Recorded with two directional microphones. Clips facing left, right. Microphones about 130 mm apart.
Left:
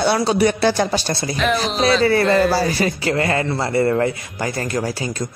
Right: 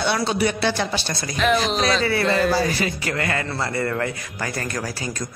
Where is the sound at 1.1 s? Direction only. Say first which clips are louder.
Left 6 dB; 30° left (ahead or behind).